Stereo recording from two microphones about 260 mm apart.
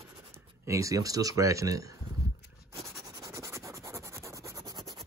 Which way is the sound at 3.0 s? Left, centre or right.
Centre.